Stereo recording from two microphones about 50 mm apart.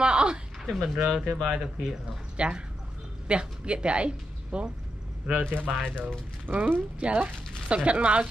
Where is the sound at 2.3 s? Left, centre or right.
Centre.